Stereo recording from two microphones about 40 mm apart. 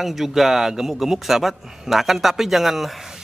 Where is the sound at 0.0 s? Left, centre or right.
Centre.